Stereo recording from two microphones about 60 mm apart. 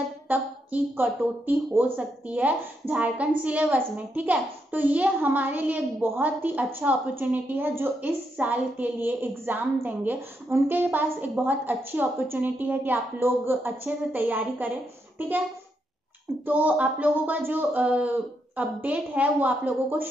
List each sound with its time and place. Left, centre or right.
0.3 s a woman's voice: right
13.8 s a woman's voice: right
16.4 s a woman's voice: right
17.8 s a woman's voice: centre